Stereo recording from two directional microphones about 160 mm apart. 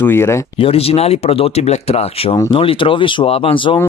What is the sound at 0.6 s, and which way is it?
Speech, 35° left (ahead or behind).